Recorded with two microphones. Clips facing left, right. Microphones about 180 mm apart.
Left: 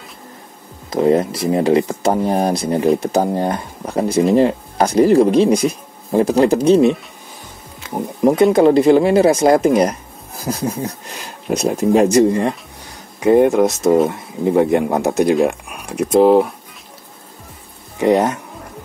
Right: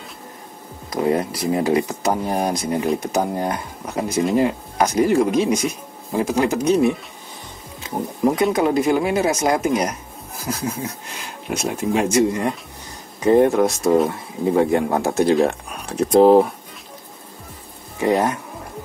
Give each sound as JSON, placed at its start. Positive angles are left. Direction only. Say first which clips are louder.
{"t": 0.8, "sound": "speech", "louder": "left 5 dB", "side_deg": 25}
{"t": 7.9, "sound": "a sound", "louder": "left 4 dB", "side_deg": 25}
{"t": 8.5, "sound": "speech", "louder": "left 7 dB", "side_deg": 30}
{"t": 13.2, "sound": "speech", "louder": "left 3 dB", "side_deg": 15}
{"t": 16.2, "sound": "speech", "louder": "left 1 dB", "side_deg": 0}
{"t": 17.9, "sound": "speech", "louder": "left 4 dB", "side_deg": 20}